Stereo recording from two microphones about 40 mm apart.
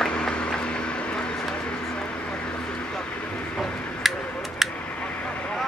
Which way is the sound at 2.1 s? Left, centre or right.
Left.